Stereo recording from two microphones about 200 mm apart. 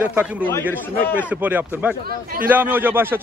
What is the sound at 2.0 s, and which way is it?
Speech, 45° right (ahead or behind).